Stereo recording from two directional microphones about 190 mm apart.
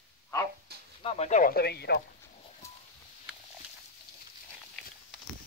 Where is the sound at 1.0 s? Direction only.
30° left (ahead or behind); by 2.0 s 60° left (ahead or behind).